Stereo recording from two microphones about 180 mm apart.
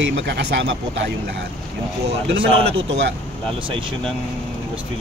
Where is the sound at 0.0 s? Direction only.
70° right (ahead or behind).